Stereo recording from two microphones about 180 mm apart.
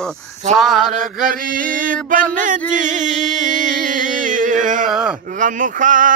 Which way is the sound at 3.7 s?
45° right (ahead or behind).